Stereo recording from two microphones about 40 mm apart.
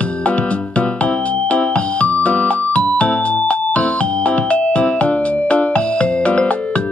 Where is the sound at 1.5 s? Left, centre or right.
Left.